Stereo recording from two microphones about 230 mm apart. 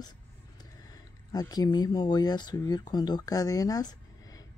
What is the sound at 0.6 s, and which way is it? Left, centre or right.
Speech, centre.